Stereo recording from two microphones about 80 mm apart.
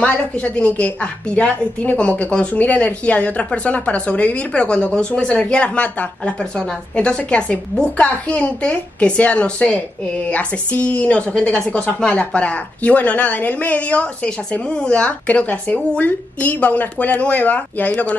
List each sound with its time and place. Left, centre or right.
0.0 s a woman's voice: centre